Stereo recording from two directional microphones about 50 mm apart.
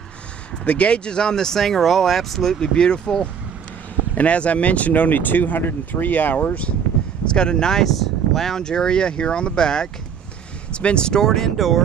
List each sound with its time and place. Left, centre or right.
0.7 s speech: left
4.1 s speech: left
7.3 s speech: centre
11.2 s speech: centre